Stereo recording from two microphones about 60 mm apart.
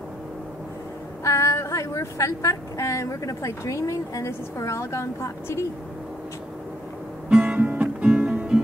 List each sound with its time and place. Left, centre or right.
1.2 s a woman's voice: left
7.2 s guitar: centre